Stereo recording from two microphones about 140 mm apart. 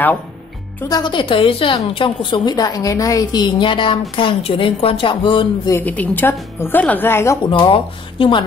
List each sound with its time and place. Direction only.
0.8 s a woman's voice: 30° left (ahead or behind)
5.7 s speech: 15° left (ahead or behind)
7.4 s a woman's voice: 35° left (ahead or behind)